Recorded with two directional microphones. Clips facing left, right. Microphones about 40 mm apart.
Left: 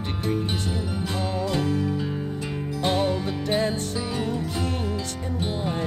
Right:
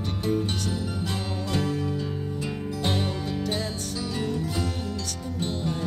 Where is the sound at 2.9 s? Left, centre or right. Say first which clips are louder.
Left 5 dB; left.